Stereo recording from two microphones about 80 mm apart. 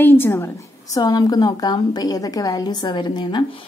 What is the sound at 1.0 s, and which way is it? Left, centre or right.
A woman's voice, left.